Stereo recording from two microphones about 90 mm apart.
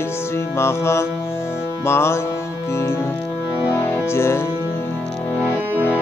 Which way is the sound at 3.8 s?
30° left (ahead or behind).